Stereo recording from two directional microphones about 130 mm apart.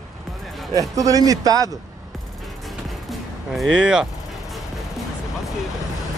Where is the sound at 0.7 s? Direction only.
25° right (ahead or behind).